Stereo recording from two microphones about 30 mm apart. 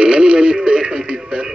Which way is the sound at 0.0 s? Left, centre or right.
Right.